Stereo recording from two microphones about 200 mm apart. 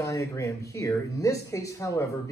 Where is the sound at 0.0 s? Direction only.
15° left (ahead or behind).